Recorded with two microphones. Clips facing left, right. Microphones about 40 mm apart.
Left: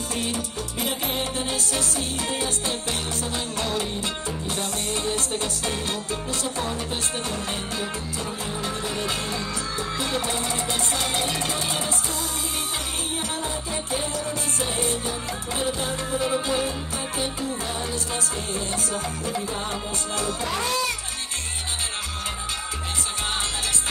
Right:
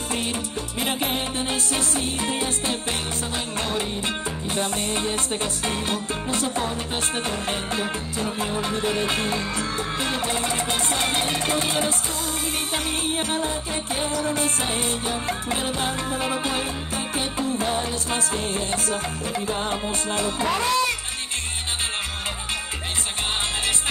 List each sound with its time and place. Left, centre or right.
0.1 s music: right
3.5 s music: right
7.2 s music: right
14.2 s music: right